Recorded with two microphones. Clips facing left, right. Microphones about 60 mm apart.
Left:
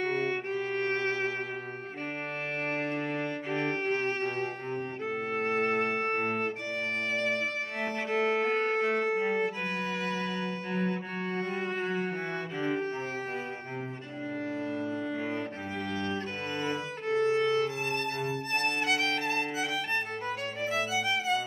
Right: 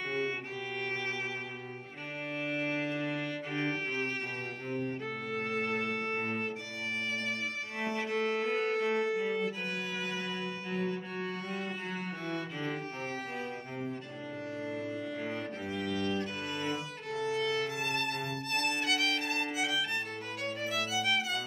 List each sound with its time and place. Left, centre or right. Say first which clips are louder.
0.0 s music: left 5 dB; left
2.7 s music: left 2 dB; left
5.3 s violin: left 5 dB; left
8.1 s music: left 6 dB; left
8.5 s music: left 3 dB; left
10.0 s cello: left 4 dB; left
15.8 s music: even; left